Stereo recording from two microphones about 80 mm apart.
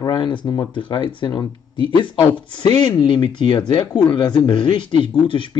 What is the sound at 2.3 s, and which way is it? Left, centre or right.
Speech, left.